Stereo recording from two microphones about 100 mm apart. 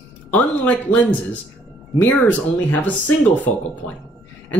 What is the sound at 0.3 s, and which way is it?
Speech, 15° left (ahead or behind).